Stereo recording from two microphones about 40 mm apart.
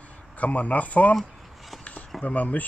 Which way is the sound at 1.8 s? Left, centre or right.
Left.